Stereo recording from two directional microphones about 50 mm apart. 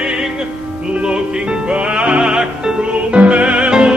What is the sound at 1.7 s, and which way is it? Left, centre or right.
Music, right.